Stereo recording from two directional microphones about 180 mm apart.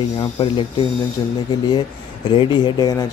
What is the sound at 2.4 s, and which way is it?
Speech, 25° left (ahead or behind).